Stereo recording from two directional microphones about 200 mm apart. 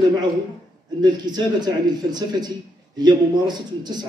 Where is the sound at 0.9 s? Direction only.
20° right (ahead or behind).